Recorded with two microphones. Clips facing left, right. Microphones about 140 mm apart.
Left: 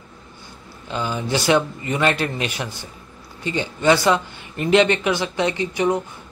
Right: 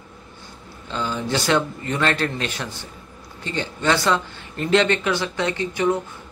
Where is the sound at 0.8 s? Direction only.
15° left (ahead or behind).